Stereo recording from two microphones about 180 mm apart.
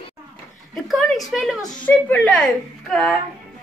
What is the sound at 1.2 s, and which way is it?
A woman's voice, centre (ahead or behind).